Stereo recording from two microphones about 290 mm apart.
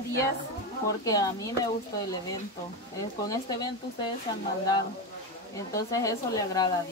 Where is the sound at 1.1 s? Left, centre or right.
Centre.